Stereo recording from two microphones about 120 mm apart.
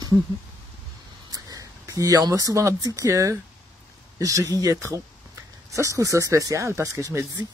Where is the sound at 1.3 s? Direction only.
30° right (ahead or behind).